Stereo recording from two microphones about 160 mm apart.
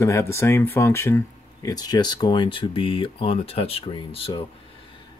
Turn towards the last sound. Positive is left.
turn(degrees=35)  # may be behind; listen again after turning